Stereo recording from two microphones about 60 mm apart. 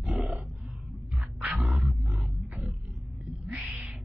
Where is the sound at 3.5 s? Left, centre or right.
Right.